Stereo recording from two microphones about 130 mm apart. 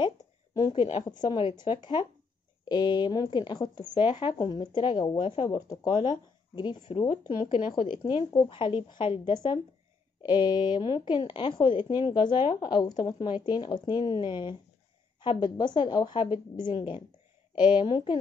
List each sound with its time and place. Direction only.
0.6 s a woman's voice: 40° left (ahead or behind)